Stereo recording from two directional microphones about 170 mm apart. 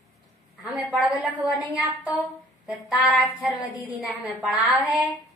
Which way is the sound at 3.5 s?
20° left (ahead or behind).